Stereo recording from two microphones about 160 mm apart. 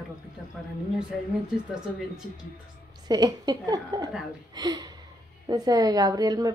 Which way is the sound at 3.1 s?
25° right (ahead or behind).